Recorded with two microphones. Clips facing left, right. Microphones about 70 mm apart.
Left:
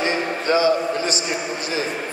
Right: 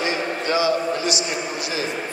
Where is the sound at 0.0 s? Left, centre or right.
Left.